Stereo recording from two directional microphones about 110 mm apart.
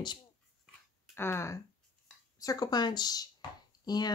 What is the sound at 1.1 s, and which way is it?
Speech, 20° left (ahead or behind).